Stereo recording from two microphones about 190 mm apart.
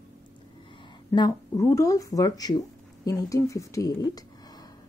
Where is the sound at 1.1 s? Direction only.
20° left (ahead or behind).